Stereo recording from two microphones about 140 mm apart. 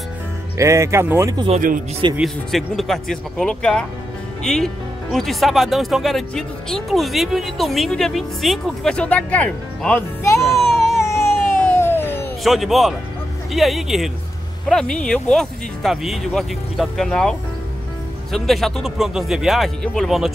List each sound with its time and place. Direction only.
0.6 s speech: 20° right (ahead or behind)
2.1 s speech: centre (ahead or behind)
10.4 s music: centre (ahead or behind)
11.0 s baby cry: 20° left (ahead or behind)
12.4 s speech: centre (ahead or behind)